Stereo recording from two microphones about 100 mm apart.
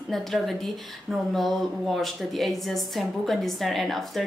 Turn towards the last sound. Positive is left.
turn(degrees=0)  # may be behind; listen again after turning